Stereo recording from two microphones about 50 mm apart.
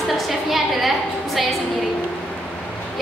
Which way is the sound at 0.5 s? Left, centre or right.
Centre.